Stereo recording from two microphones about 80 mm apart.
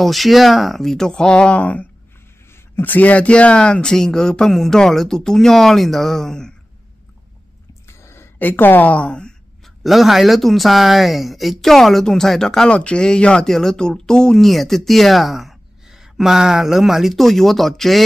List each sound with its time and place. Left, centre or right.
0.0 s speech: centre
8.0 s a sound: left
8.4 s speech: left
9.8 s speech: centre